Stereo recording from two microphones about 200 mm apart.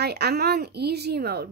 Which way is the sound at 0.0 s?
55° right (ahead or behind).